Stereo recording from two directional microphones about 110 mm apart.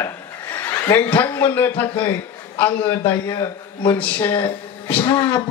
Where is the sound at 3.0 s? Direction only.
25° left (ahead or behind).